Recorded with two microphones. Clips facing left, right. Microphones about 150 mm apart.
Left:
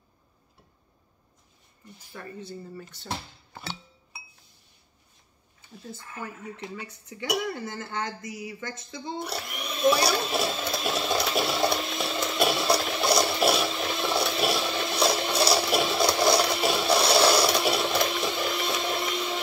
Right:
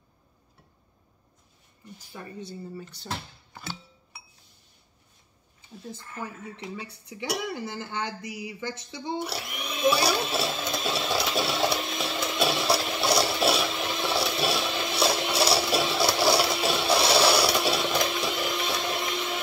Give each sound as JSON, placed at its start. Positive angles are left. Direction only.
{"t": 2.0, "sound": "speech", "side_deg": -15}
{"t": 5.9, "sound": "speech", "side_deg": -15}
{"t": 10.8, "sound": "a sound", "side_deg": 0}